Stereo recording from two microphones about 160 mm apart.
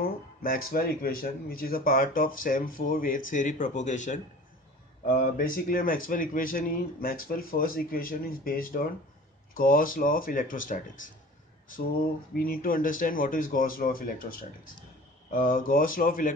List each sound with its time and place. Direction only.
0.0 s speech: 65° left (ahead or behind)
12.4 s speech: 65° left (ahead or behind)
15.2 s speech: 60° left (ahead or behind)